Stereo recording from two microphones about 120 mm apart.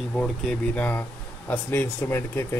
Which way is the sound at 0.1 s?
10° left (ahead or behind).